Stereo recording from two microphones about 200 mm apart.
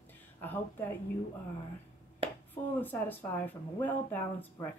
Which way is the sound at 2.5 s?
10° left (ahead or behind).